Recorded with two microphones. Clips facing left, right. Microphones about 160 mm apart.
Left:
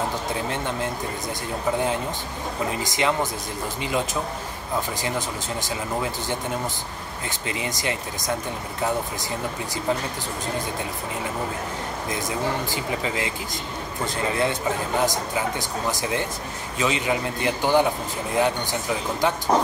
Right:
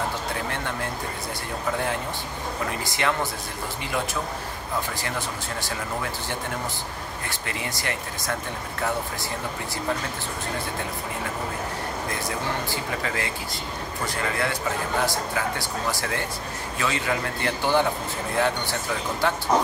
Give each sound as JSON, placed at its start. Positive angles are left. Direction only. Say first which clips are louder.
{"t": 0.5, "sound": "a man's voice", "louder": "left 3 dB", "side_deg": 20}
{"t": 2.8, "sound": "a man's voice", "louder": "left 3 dB", "side_deg": 20}
{"t": 7.2, "sound": "a man's voice", "louder": "left 4 dB", "side_deg": 20}
{"t": 12.1, "sound": "a man's voice", "louder": "left 5 dB", "side_deg": 20}